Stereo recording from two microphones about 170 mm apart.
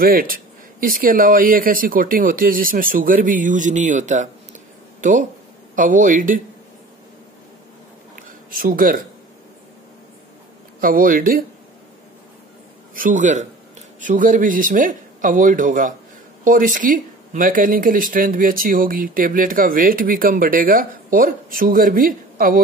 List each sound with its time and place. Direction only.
0.0 s speech: 60° right (ahead or behind)
5.8 s a man's voice: 50° right (ahead or behind)
8.2 s a sound: 55° right (ahead or behind)
10.8 s speech: 55° right (ahead or behind)
12.9 s a man's voice: 50° right (ahead or behind)